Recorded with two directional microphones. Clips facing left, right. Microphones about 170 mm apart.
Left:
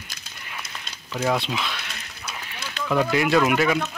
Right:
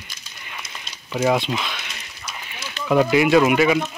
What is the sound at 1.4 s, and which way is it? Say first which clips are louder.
Speech: right 2 dB; centre (ahead or behind).